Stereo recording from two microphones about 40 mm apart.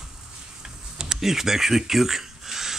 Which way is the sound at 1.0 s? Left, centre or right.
Centre.